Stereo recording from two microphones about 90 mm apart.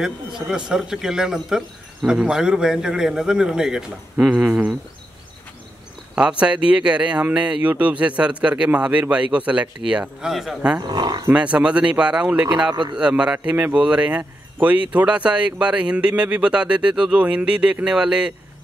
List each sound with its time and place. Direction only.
0.0 s speech: 5° right (ahead or behind)
6.4 s speech: 10° right (ahead or behind)
10.9 s speech: 50° right (ahead or behind)
11.3 s speech: 10° right (ahead or behind)